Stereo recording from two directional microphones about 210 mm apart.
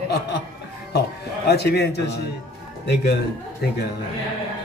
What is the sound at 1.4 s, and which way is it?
Speech, 50° left (ahead or behind).